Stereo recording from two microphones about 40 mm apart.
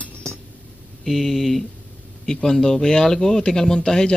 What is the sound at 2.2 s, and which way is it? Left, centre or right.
Speech, centre.